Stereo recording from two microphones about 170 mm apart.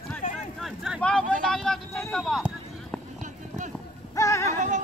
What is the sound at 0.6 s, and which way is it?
Vehicle, centre (ahead or behind).